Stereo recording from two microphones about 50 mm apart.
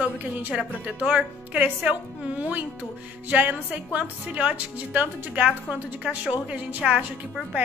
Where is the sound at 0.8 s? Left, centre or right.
Right.